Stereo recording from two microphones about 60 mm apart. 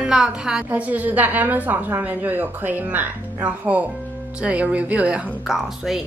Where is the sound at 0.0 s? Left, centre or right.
Centre.